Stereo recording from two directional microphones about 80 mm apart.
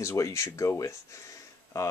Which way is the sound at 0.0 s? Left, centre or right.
Left.